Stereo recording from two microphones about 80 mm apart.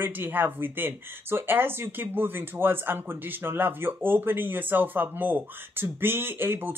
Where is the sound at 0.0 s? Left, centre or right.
Right.